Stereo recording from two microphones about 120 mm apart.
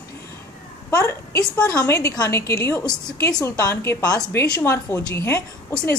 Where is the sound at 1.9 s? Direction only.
25° left (ahead or behind).